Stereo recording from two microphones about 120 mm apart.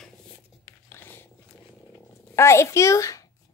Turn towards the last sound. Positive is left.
turn(degrees=25)  # may be behind; listen again after turning